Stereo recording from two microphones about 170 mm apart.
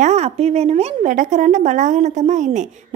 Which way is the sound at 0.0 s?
40° right (ahead or behind).